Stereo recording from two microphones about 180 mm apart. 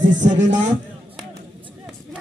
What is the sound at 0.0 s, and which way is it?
Speech, 45° right (ahead or behind).